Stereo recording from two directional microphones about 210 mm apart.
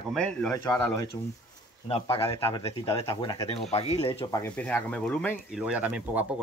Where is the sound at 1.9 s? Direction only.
25° left (ahead or behind).